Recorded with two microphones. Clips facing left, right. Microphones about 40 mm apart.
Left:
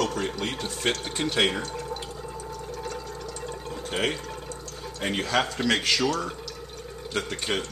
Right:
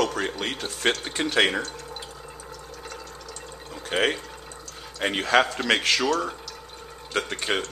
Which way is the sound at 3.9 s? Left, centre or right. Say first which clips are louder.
Right 4 dB; right.